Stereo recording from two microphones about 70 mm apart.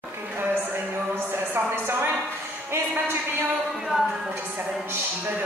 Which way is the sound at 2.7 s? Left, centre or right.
Right.